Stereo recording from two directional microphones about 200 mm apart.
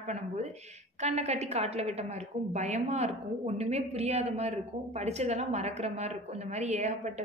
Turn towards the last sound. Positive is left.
turn(degrees=-35)  # may be behind; listen again after turning